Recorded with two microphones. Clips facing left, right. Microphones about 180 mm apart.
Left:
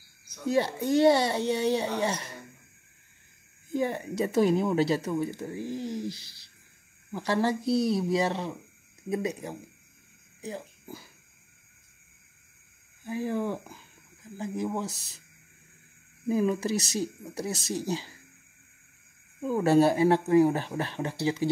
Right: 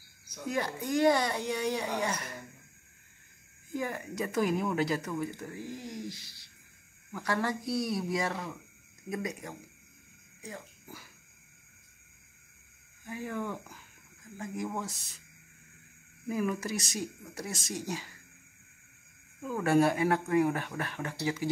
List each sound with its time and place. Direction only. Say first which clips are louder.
0.5 s speech: left 7 dB; 30° left (ahead or behind)
3.7 s speech: left 6 dB; 30° left (ahead or behind)
13.0 s speech: left 6 dB; 30° left (ahead or behind)
14.9 s speech: left 3 dB; centre (ahead or behind)
16.3 s speech: left 6 dB; 25° left (ahead or behind)
19.4 s speech: left 4 dB; 30° left (ahead or behind)